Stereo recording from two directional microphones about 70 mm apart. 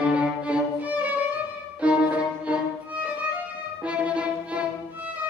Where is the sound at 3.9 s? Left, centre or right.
Centre.